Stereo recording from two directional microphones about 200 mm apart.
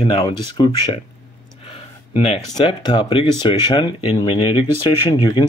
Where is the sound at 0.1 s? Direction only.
20° left (ahead or behind).